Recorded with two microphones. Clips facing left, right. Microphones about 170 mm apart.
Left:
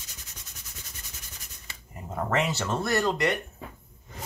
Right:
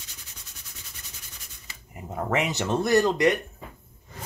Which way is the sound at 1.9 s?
15° right (ahead or behind).